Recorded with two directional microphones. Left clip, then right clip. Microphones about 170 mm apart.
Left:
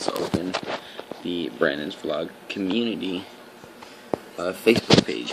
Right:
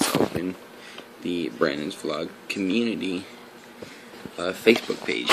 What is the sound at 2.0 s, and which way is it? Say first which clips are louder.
Speech: left 2 dB; 5° right (ahead or behind).